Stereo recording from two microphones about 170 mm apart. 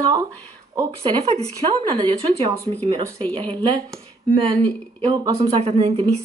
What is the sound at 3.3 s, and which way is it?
A woman's voice, 30° right (ahead or behind).